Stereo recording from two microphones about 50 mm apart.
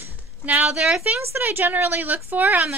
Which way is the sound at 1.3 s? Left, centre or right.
Right.